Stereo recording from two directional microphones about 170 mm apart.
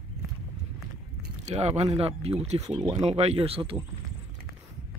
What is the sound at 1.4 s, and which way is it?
Speech, 40° right (ahead or behind).